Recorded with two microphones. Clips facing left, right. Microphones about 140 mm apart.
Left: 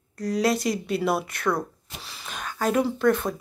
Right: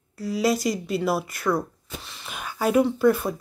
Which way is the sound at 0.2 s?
5° right (ahead or behind).